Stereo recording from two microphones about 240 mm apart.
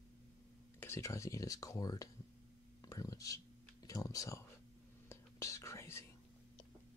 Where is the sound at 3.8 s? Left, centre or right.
Centre.